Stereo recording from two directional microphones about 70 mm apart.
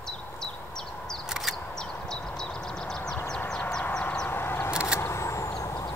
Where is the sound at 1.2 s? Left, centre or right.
Centre.